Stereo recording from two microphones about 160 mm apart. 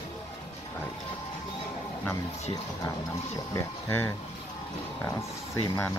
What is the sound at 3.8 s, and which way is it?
Speech, 15° left (ahead or behind).